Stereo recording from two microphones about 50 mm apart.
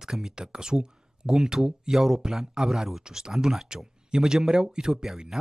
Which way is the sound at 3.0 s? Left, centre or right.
Centre.